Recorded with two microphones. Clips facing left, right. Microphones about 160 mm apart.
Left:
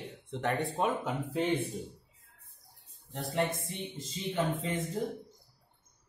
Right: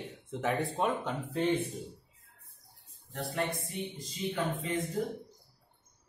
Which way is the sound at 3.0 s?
20° left (ahead or behind).